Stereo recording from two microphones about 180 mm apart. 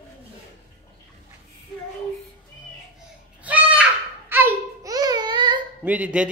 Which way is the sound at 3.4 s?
10° right (ahead or behind).